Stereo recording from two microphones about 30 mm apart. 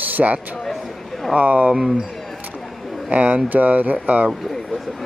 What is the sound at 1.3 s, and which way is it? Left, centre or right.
Speech, right.